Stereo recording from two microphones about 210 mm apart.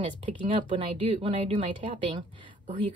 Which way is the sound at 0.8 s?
25° right (ahead or behind).